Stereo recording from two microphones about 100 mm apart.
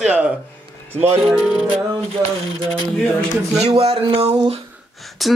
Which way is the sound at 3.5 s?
85° right.